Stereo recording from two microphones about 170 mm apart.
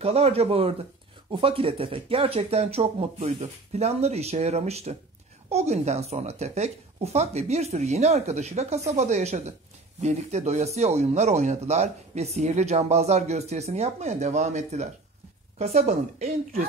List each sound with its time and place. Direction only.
0.0 s speech: 35° right (ahead or behind)